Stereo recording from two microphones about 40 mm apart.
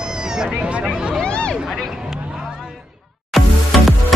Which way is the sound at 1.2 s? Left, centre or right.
Left.